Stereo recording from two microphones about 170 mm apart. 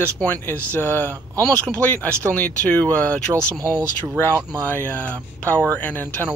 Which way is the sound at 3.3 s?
20° right (ahead or behind).